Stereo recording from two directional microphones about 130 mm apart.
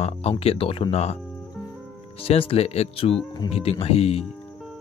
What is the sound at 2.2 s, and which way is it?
Speech, 45° left (ahead or behind).